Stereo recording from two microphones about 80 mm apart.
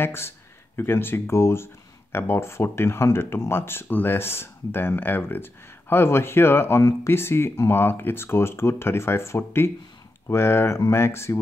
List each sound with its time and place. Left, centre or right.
0.0 s speech: left